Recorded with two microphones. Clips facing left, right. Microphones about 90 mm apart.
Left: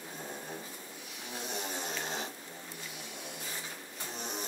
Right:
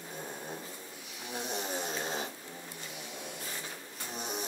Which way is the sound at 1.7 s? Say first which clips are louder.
Right 2 dB; 20° right (ahead or behind).